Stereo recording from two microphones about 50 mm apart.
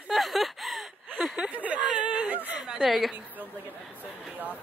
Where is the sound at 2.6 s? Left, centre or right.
Centre.